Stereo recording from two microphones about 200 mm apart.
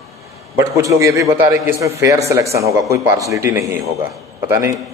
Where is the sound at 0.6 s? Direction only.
15° right (ahead or behind).